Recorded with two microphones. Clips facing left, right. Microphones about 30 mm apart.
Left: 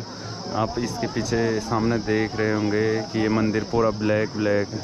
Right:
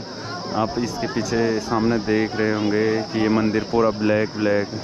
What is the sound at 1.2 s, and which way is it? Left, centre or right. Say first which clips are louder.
Speech: right 2 dB; right.